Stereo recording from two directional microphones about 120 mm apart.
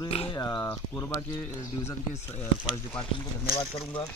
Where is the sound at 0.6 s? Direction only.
20° left (ahead or behind).